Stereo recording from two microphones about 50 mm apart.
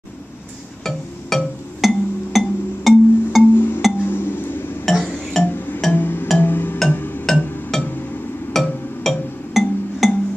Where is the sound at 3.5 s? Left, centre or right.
Left.